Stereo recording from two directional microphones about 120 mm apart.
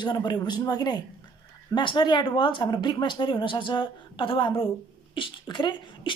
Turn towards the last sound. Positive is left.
turn(degrees=40)  # may be behind; listen again after turning